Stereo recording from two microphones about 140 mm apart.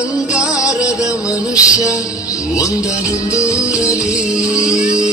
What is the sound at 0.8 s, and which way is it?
Music, 25° left (ahead or behind).